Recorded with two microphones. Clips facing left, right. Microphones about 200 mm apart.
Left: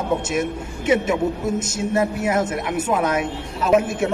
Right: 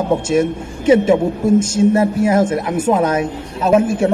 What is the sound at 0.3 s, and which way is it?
A woman's voice, 30° right (ahead or behind).